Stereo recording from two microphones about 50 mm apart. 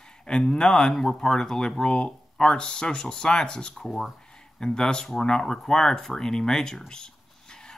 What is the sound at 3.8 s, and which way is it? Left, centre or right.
Speech, centre.